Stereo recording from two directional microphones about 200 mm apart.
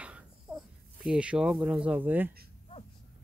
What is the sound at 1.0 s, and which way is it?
Speech, 5° right (ahead or behind).